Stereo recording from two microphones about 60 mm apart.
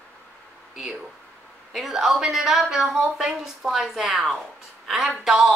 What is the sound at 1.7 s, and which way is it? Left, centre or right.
A woman's voice, centre.